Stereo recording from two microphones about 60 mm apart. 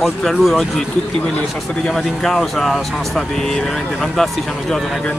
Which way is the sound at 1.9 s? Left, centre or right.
Centre.